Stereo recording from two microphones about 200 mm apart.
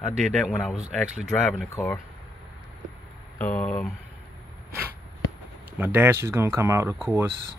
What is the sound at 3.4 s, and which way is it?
Speech, 5° left (ahead or behind).